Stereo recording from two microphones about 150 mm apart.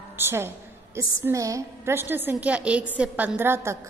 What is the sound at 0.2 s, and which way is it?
A woman's voice, 15° right (ahead or behind).